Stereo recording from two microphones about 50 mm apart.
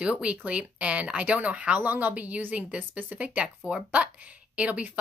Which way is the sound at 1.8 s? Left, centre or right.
Right.